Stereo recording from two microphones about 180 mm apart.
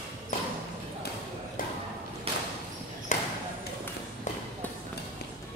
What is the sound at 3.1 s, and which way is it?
Ping, 40° left (ahead or behind).